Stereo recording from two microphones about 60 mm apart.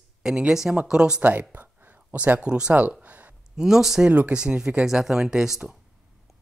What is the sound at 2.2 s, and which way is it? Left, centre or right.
Speech, right.